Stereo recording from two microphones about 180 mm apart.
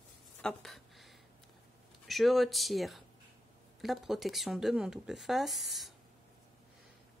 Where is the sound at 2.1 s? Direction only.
Centre (ahead or behind).